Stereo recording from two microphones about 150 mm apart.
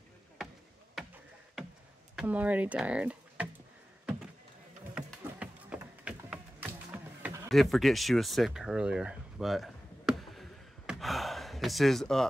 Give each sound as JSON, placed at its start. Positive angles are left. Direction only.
{"t": 2.1, "sound": "speech", "side_deg": -10}
{"t": 4.9, "sound": "a sound", "side_deg": -10}
{"t": 7.4, "sound": "speech", "side_deg": 0}
{"t": 10.9, "sound": "gasp", "side_deg": 0}